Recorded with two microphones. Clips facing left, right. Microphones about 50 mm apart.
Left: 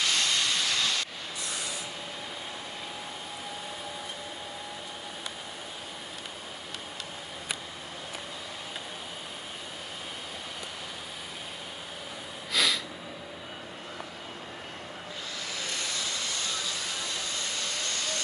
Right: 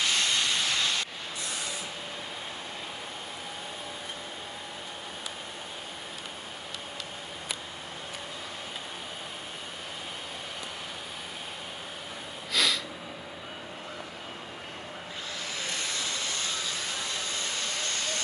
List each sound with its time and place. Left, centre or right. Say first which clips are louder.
0.0 s steam: even; right
12.5 s a sound: even; centre
15.6 s vehicle: right 1 dB; right
17.6 s steam: right 1 dB; right